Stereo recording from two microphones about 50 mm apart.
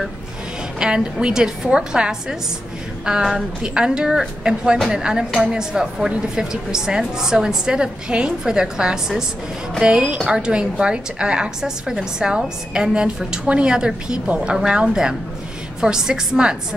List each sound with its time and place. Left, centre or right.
0.7 s a woman's voice: centre